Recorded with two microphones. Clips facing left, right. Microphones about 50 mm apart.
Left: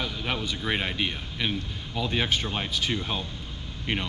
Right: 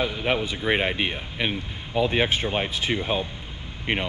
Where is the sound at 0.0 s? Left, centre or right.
Right.